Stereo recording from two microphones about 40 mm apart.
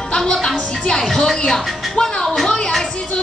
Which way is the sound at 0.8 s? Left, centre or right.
Centre.